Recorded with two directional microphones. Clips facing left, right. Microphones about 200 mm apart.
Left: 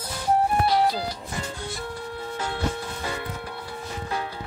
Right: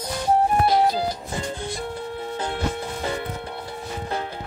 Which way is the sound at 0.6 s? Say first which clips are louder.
Right 3 dB; 50° right (ahead or behind).